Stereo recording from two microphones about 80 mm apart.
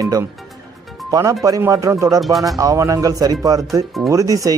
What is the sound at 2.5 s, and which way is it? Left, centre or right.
Speech, right.